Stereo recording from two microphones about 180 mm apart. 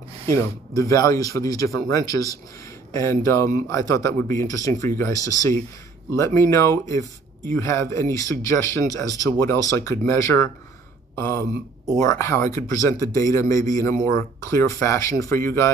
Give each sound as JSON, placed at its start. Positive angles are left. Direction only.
{"t": 0.3, "sound": "speech", "side_deg": 15}